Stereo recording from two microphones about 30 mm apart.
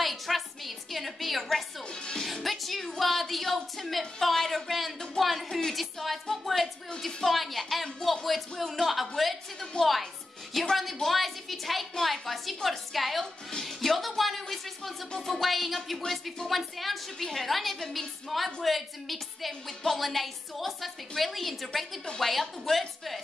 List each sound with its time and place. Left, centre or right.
0.0 s a sound: centre
2.2 s music: centre
3.0 s a woman's voice: centre